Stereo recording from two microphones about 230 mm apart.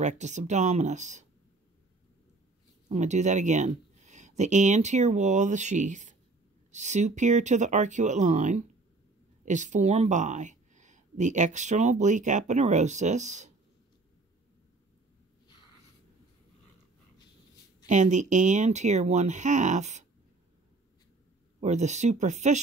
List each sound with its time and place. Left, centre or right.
0.0 s speech: right
2.9 s speech: right
17.8 s speech: right
21.5 s speech: right